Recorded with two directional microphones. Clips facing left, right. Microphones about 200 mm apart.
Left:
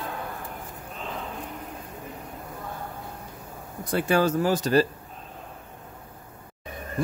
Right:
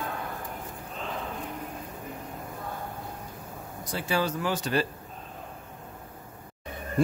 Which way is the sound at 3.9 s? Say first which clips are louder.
Left 6 dB; 55° left (ahead or behind).